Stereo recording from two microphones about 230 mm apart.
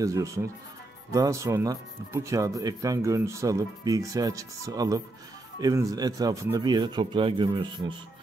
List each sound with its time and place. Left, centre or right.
0.0 s speech: centre